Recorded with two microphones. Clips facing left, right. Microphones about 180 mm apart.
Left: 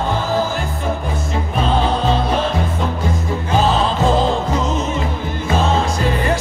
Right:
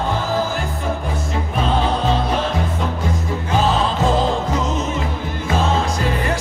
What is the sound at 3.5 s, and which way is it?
Music, 30° left (ahead or behind).